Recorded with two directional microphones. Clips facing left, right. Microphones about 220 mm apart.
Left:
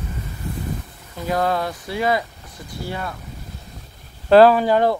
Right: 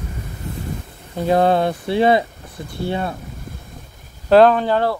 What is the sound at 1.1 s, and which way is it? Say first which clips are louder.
Speech: right 6 dB; 30° right (ahead or behind).